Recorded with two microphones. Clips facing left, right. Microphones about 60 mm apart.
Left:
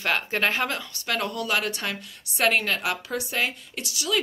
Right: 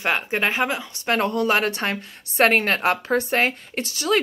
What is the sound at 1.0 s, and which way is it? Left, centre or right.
Speech, right.